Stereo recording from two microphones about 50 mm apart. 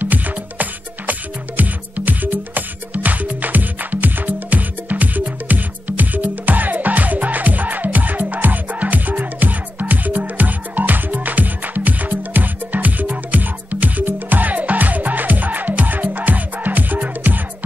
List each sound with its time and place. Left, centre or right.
0.0 s music: right